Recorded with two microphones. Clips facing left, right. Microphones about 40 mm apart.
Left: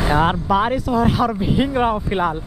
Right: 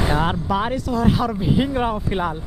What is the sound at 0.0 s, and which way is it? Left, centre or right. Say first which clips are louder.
Speech: left 3 dB; centre.